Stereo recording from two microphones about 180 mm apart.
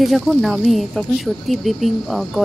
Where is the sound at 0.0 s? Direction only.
Centre (ahead or behind).